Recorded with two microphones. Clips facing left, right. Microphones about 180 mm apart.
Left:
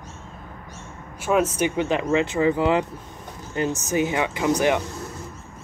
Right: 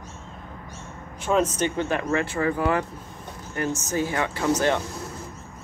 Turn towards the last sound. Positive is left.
turn(degrees=15)  # may be behind; listen again after turning